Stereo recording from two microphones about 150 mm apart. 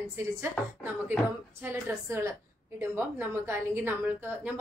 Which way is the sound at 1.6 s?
15° right (ahead or behind).